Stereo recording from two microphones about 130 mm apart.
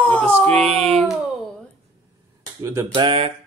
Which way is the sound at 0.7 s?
50° right (ahead or behind).